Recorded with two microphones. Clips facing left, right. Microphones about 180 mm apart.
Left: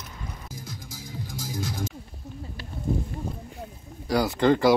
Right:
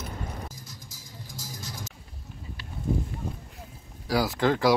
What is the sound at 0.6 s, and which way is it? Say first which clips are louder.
Music: left 8 dB; 55° left (ahead or behind).